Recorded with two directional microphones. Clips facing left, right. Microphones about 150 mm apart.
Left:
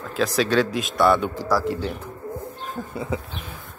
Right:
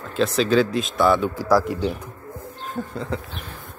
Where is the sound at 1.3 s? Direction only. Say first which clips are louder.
Right 4 dB; 15° right (ahead or behind).